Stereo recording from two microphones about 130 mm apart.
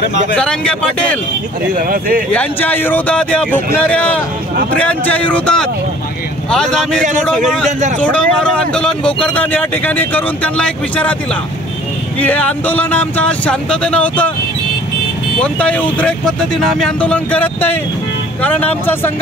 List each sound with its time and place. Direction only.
0.4 s speech: 5° left (ahead or behind)
1.8 s speech: 90° right
2.3 s speech: 15° left (ahead or behind)
8.0 s speech: 10° left (ahead or behind)
12.2 s speech: 10° left (ahead or behind)
15.4 s speech: 10° left (ahead or behind)